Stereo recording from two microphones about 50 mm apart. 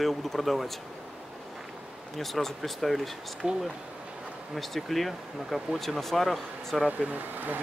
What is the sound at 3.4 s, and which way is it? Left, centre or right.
Speech, centre.